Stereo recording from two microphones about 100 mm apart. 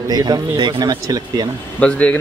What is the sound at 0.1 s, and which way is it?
Speech, 40° right (ahead or behind).